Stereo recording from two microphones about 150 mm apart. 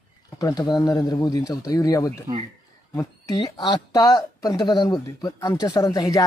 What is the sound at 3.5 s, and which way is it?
Speech, 30° left (ahead or behind).